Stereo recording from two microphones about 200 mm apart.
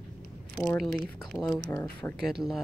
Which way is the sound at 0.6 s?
Centre (ahead or behind).